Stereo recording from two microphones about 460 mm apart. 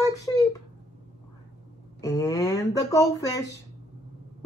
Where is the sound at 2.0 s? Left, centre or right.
Centre.